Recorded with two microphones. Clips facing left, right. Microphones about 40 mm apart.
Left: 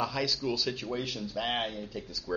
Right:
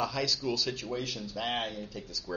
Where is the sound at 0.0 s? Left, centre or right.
Centre.